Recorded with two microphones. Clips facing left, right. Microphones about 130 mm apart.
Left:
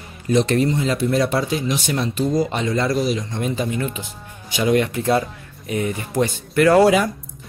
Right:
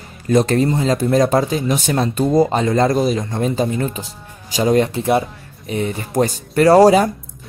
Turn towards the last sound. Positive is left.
turn(degrees=-35)  # may be behind; listen again after turning